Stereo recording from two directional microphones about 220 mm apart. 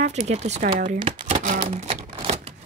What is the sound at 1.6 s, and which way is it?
Typewriter, 30° right (ahead or behind).